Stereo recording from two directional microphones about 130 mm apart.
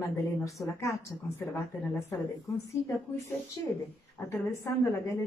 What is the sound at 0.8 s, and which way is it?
Speech, 20° left (ahead or behind).